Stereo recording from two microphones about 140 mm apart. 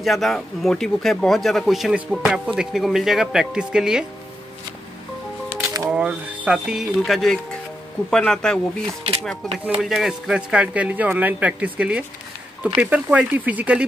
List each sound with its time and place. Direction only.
0.0 s speech: centre (ahead or behind)
5.5 s music: 15° right (ahead or behind)
5.9 s speech: 10° right (ahead or behind)